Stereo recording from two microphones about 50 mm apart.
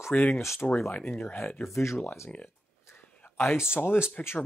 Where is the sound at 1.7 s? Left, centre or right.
Left.